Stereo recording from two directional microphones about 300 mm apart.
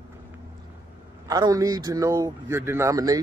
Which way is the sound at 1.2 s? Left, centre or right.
Centre.